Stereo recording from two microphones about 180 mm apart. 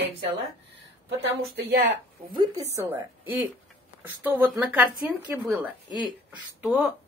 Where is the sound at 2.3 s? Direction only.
25° right (ahead or behind).